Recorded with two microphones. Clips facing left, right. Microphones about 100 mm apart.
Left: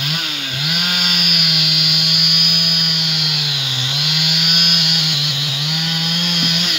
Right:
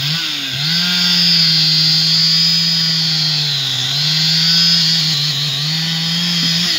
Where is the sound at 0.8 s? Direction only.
40° left (ahead or behind).